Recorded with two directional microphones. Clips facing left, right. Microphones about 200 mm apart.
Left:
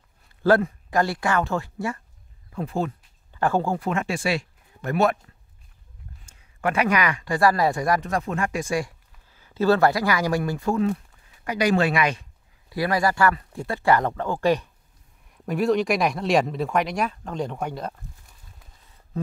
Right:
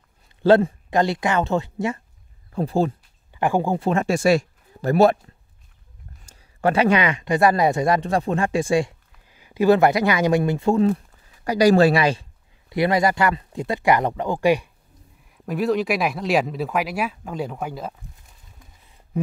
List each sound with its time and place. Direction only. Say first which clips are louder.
0.4 s speech: right 4 dB; 25° right (ahead or behind)
2.5 s speech: right 6 dB; 30° right (ahead or behind)
3.3 s speech: right 2 dB; 15° right (ahead or behind)
3.9 s speech: right 11 dB; 40° right (ahead or behind)
6.2 s speech: right 5 dB; 35° right (ahead or behind)
9.3 s speech: right 4 dB; 15° right (ahead or behind)
15.3 s speech: even; centre (ahead or behind)